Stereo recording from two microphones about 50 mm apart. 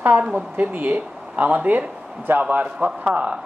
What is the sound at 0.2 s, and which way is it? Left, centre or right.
A woman's voice, right.